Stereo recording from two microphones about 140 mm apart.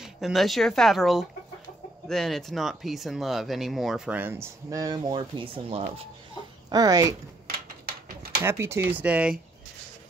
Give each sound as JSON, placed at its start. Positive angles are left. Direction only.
{"t": 0.0, "sound": "speech", "side_deg": 0}
{"t": 6.7, "sound": "speech", "side_deg": -25}
{"t": 7.4, "sound": "a sound", "side_deg": -90}
{"t": 8.4, "sound": "speech", "side_deg": -20}